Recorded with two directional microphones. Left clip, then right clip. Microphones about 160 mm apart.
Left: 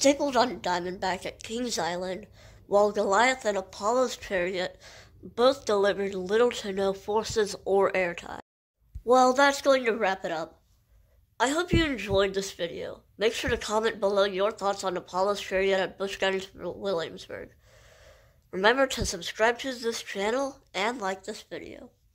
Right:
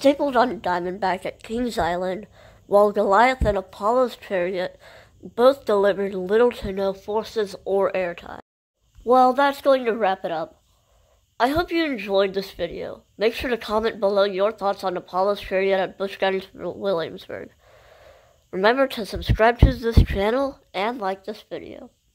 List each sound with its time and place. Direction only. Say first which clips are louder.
0.0 s a woman's voice: right 5 dB; 30° right (ahead or behind); by 8.5 s 5° right (ahead or behind)
9.0 s a woman's voice: right 4 dB; 15° right (ahead or behind)